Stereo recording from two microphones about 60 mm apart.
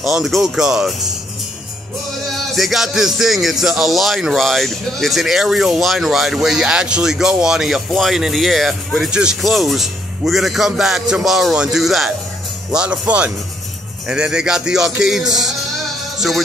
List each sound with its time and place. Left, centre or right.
0.0 s a man's voice: centre
2.5 s speech: centre
9.1 s a man's voice: centre
9.4 s speech: centre
12.7 s a man's voice: centre